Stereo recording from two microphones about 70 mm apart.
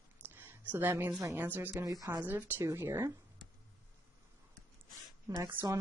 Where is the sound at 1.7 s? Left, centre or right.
Right.